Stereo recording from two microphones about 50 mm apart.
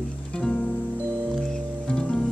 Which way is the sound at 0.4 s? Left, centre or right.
Centre.